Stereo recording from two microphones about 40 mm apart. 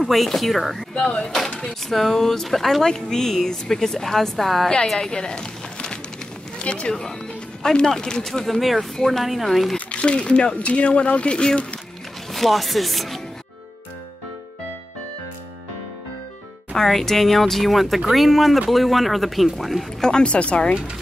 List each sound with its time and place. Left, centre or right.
0.0 s speech: centre
0.9 s speech: left
1.9 s a woman's voice: centre; by 6.9 s left
6.9 s a woman's voice: centre
9.2 s speech: centre
9.8 s speech: left
12.3 s speech: centre
16.7 s speech: centre
20.1 s speech: left